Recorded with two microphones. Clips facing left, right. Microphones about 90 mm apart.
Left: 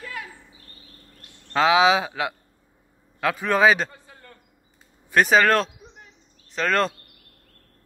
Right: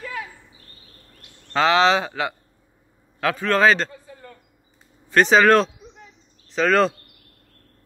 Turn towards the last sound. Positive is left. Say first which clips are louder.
# right 4 dB
turn(degrees=0)  # may be behind; listen again after turning